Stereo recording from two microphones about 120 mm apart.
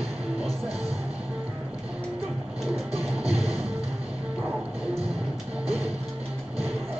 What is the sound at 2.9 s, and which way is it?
Music, 55° right (ahead or behind).